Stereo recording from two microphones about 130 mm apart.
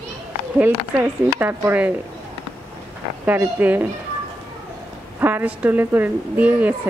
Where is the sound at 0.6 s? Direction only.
15° right (ahead or behind).